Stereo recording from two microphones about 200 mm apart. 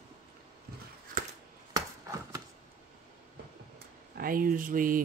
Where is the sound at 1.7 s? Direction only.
15° right (ahead or behind).